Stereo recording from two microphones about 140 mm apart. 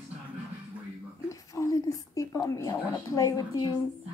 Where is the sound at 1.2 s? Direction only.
25° left (ahead or behind).